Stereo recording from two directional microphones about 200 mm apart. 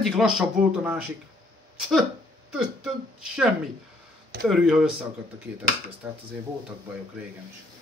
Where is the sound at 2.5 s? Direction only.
Centre (ahead or behind).